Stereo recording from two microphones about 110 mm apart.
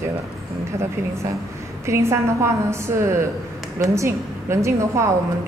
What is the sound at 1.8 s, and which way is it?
A woman's voice, 25° right (ahead or behind).